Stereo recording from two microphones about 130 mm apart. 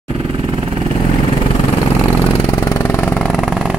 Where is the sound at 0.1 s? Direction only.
45° right (ahead or behind).